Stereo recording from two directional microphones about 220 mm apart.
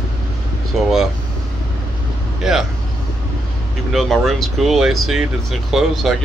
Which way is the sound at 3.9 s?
Centre (ahead or behind).